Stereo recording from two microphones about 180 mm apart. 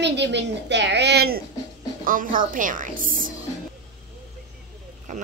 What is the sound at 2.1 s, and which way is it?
A woman's voice, 50° right (ahead or behind).